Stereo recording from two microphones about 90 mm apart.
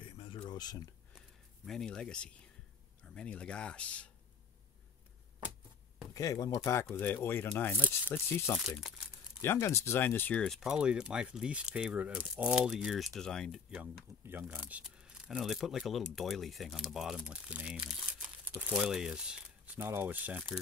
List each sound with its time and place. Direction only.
0.0 s a sound: 70° left (ahead or behind); by 0.9 s 45° left (ahead or behind)
1.7 s speech: 5° left (ahead or behind)
6.1 s speech: 40° left (ahead or behind)
6.5 s speech: 30° left (ahead or behind)
8.5 s speech: 5° right (ahead or behind)
9.4 s speech: 30° left (ahead or behind)
10.6 s speech: 10° right (ahead or behind)
14.2 s speech: 25° right (ahead or behind)
14.8 s speech: 10° right (ahead or behind)